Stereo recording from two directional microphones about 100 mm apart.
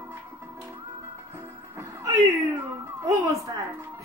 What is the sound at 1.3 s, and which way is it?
Music, 25° right (ahead or behind).